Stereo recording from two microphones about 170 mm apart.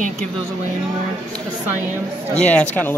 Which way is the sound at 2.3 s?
5° left (ahead or behind).